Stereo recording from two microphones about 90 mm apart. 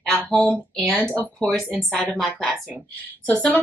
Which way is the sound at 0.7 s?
Centre (ahead or behind).